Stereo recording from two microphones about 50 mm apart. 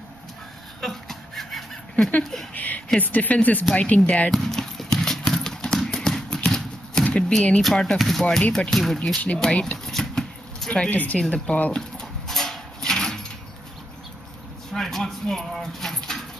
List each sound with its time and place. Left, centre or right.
0.7 s a sound: centre
2.5 s speech: left
4.3 s clip-clop: centre
7.2 s speech: centre
7.6 s speech: centre
9.4 s speech: centre
9.9 s a sound: centre
10.9 s speech: left
11.1 s speech: centre
11.5 s speech: left
12.0 s a sound: centre
14.7 s a sound: centre